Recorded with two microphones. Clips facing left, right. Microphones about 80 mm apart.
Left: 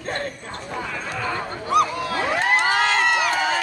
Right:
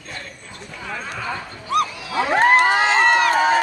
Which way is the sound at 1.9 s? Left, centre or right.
Left.